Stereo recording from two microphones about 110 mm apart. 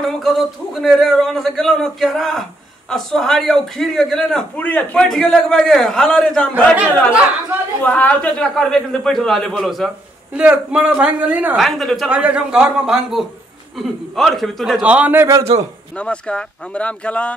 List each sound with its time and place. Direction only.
0.0 s a man's voice: centre (ahead or behind)
4.6 s speech: 15° left (ahead or behind)
5.0 s a man's voice: 5° left (ahead or behind)
7.8 s a man's voice: 10° left (ahead or behind)
10.3 s a woman's voice: 10° right (ahead or behind)
11.5 s a man's voice: centre (ahead or behind)
12.1 s a woman's voice: 10° right (ahead or behind)
14.9 s a woman's voice: 15° right (ahead or behind)
15.5 s a man's voice: 65° right (ahead or behind)
16.0 s speech: 10° left (ahead or behind)